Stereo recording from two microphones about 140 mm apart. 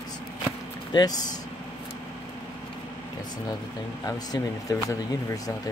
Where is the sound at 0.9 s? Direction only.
30° left (ahead or behind).